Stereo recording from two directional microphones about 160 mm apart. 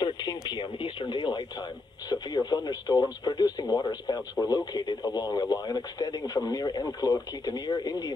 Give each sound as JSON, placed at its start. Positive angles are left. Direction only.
{"t": 0.0, "sound": "speech", "side_deg": 25}